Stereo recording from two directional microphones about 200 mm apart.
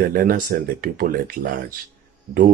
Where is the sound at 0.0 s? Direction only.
45° right (ahead or behind).